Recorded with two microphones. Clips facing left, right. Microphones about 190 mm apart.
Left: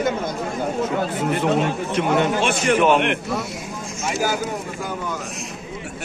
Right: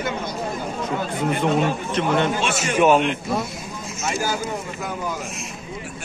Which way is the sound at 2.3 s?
55° left (ahead or behind).